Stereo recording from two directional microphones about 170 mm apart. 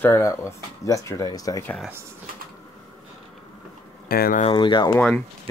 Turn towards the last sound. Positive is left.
turn(degrees=10)  # may be behind; listen again after turning